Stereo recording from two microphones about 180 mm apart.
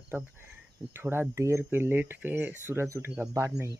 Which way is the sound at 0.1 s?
10° right (ahead or behind).